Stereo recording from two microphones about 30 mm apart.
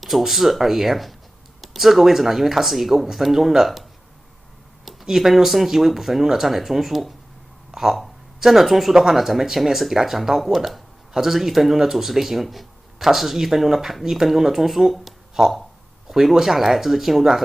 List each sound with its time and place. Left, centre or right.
0.0 s speech: centre
5.0 s speech: centre
15.4 s speech: centre